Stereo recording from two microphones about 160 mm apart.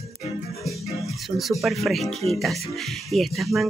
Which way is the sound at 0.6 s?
Centre (ahead or behind).